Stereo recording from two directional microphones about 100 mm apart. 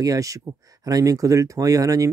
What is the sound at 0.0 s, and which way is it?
Speech, 35° right (ahead or behind).